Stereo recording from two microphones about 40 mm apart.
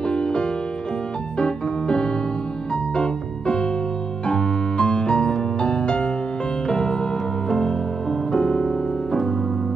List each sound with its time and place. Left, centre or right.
0.1 s music: left
1.4 s keyboard: left
3.0 s music: left